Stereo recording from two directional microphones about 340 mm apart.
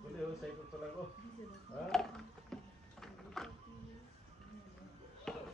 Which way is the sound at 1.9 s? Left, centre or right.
Centre.